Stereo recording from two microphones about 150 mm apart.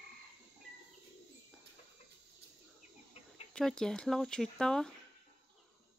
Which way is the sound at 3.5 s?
5° left (ahead or behind).